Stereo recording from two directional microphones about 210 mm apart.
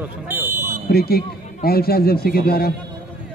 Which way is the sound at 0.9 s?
45° left (ahead or behind).